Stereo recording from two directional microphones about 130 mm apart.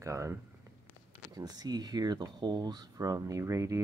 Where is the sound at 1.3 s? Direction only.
30° right (ahead or behind).